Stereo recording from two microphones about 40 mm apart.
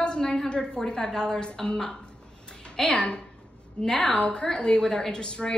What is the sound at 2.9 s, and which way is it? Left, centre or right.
A woman's voice, left.